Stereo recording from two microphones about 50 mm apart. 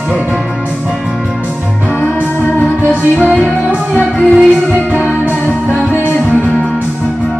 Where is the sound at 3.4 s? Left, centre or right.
Right.